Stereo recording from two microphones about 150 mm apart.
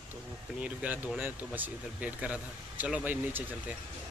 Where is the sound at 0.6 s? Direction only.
10° right (ahead or behind).